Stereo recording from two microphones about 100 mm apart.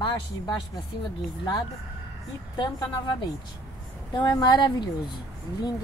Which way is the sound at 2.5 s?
45° left (ahead or behind).